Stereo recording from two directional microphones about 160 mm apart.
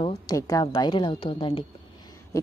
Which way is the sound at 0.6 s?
30° left (ahead or behind).